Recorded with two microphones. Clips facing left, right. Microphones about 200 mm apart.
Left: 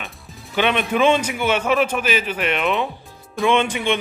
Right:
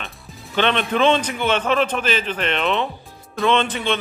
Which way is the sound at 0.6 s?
10° left (ahead or behind).